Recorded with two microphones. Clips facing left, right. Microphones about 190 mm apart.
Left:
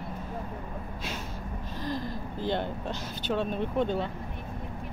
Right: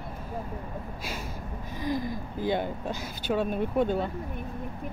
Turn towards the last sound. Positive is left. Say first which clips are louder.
# right 2 dB
turn(degrees=-10)  # may be behind; listen again after turning